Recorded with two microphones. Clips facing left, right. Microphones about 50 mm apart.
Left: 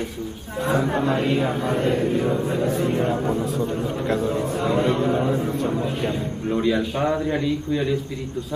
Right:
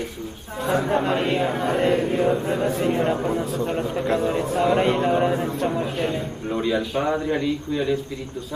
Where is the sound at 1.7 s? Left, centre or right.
Right.